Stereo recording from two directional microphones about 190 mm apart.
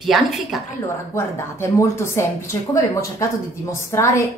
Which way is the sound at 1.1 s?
15° left (ahead or behind).